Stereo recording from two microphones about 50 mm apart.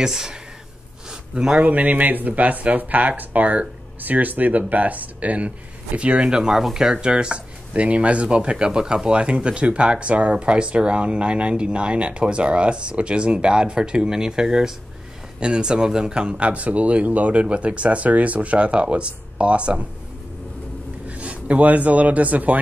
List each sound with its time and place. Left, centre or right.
0.0 s speech: centre
1.6 s speech: right
21.1 s speech: right